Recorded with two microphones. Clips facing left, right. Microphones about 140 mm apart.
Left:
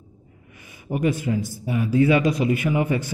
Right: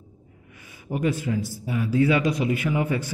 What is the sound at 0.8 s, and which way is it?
A man's voice, 15° left (ahead or behind).